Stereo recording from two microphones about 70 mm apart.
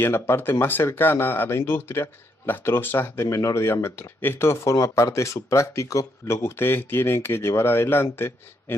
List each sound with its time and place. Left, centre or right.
0.0 s speech: left
3.3 s speech: left